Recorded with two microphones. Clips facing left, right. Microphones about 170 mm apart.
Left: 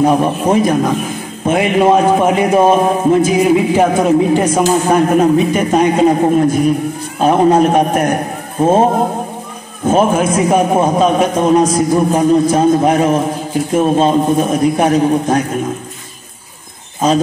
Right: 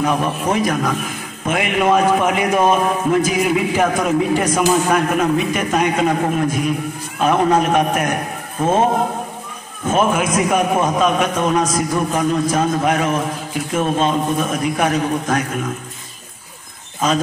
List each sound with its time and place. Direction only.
0.0 s a man's voice: 30° left (ahead or behind)
9.8 s a man's voice: 30° left (ahead or behind)
17.0 s a man's voice: 30° left (ahead or behind)